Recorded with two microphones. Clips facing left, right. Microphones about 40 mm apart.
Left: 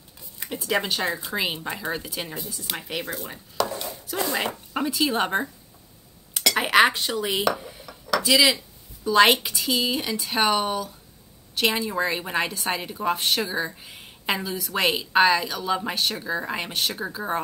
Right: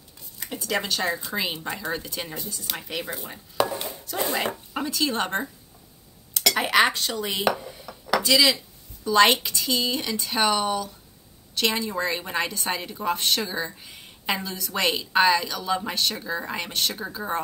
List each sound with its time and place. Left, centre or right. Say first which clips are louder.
0.7 s a woman's voice: left 1 dB; centre
3.6 s chopping: right 2 dB; right
4.7 s a woman's voice: left 3 dB; centre
7.5 s dishes: right 1 dB; centre
8.2 s a woman's voice: left 1 dB; centre